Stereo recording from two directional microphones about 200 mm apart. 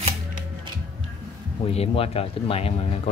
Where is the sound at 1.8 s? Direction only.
30° left (ahead or behind).